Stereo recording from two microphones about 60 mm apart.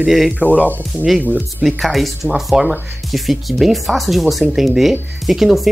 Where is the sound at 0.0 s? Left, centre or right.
Centre.